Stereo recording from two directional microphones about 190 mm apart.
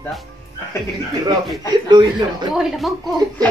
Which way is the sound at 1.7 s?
25° right (ahead or behind).